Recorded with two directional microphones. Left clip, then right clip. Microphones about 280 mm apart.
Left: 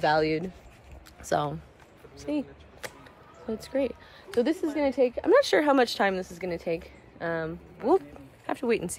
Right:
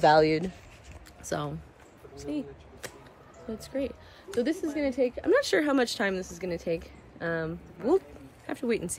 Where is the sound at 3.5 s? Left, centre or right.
Left.